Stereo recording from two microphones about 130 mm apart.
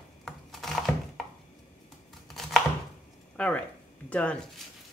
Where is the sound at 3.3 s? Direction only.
10° left (ahead or behind).